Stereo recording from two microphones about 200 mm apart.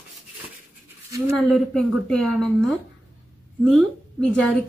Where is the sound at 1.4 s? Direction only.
Centre (ahead or behind).